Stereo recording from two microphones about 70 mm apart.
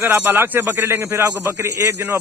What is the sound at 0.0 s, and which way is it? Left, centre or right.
A man's voice, right.